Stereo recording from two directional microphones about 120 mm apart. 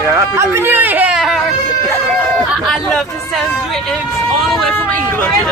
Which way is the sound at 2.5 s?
5° left (ahead or behind).